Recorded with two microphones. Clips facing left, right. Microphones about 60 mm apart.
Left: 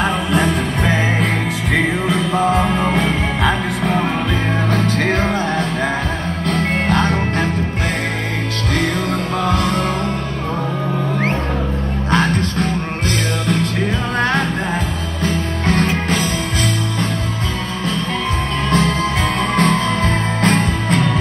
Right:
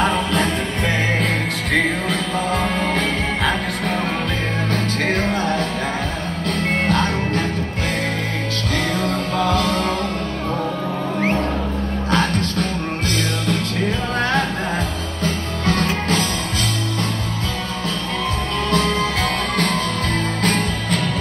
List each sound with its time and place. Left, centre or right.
1.2 s music: centre
3.4 s music: centre
4.7 s music: left
12.1 s music: left
15.2 s music: left
18.7 s music: left